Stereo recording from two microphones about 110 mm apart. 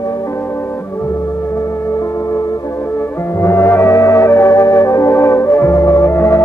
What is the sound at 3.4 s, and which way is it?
Music, 25° left (ahead or behind).